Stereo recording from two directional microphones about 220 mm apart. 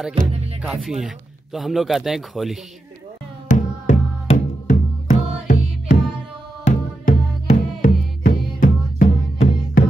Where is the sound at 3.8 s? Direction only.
35° left (ahead or behind).